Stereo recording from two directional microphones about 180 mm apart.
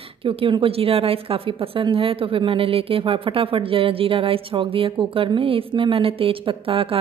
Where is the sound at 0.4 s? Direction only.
30° right (ahead or behind).